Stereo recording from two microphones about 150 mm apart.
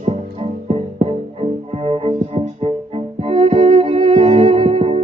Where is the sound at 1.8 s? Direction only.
35° right (ahead or behind).